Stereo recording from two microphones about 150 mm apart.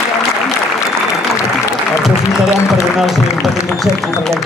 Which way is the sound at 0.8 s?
20° left (ahead or behind).